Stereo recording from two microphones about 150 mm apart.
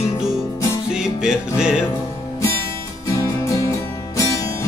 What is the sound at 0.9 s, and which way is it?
Music, 5° right (ahead or behind).